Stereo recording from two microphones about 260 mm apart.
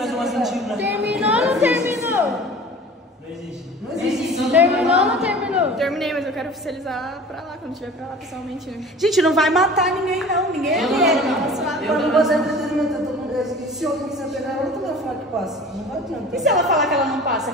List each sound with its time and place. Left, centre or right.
0.0 s a sound: centre
0.7 s speech: right
1.1 s a sound: centre
3.9 s a woman's voice: centre
9.0 s a woman's voice: centre
16.6 s a woman's voice: centre